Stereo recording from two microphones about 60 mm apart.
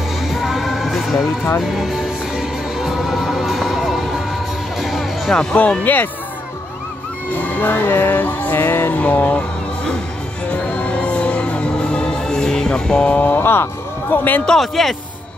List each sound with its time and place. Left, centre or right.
0.3 s music: centre
5.3 s speech: centre
5.6 s music: left
7.3 s music: left
8.9 s music: left
10.5 s music: left
13.2 s speech: left
14.4 s speech: centre